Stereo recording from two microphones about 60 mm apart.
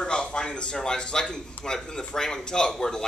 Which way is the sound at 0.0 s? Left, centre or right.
Centre.